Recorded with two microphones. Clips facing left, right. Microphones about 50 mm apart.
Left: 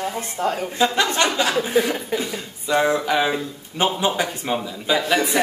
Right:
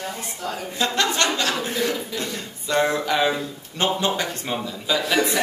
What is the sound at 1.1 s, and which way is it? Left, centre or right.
Speech, centre.